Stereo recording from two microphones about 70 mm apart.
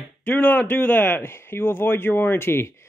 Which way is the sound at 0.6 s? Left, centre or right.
Left.